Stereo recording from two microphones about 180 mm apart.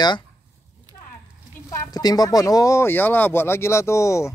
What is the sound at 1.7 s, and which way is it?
Speech, 20° left (ahead or behind).